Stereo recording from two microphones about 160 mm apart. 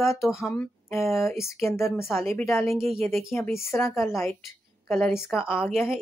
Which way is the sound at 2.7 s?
Centre (ahead or behind).